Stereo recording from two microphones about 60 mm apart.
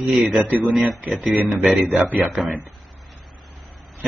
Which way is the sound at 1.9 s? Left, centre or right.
Right.